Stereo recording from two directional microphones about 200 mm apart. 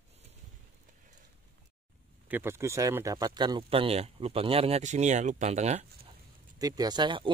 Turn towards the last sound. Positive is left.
turn(degrees=-25)  # may be behind; listen again after turning